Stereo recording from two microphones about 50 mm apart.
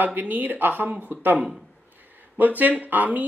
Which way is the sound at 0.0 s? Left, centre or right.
Right.